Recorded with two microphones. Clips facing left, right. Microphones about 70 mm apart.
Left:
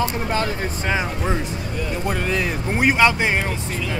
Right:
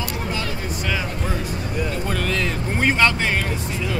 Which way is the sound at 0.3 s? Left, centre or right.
Left.